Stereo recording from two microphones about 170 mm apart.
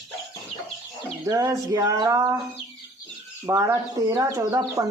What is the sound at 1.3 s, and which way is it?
Speech, 20° right (ahead or behind).